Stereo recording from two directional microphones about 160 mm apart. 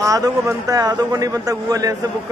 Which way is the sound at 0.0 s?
20° right (ahead or behind).